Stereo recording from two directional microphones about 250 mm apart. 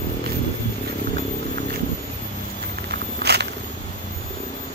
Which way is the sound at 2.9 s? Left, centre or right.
Right.